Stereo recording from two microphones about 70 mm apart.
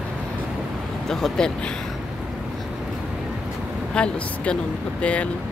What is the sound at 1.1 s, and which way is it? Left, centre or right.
Speech, centre.